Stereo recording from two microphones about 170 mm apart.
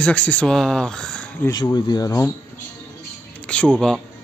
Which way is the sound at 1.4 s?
25° left (ahead or behind).